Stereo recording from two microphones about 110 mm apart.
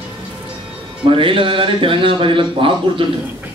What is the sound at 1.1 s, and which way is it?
A man's voice, 50° right (ahead or behind).